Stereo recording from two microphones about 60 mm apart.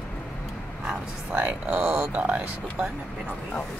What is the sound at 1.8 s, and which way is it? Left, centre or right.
Speech, right.